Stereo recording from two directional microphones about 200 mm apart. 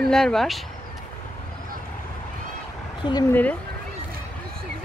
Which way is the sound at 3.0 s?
20° left (ahead or behind).